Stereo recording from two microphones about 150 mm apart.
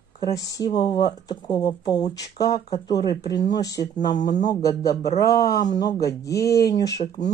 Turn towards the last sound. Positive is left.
turn(degrees=25)  # may be behind; listen again after turning